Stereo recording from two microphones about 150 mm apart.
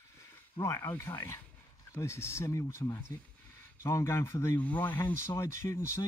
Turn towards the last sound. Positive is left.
turn(degrees=20)  # may be behind; listen again after turning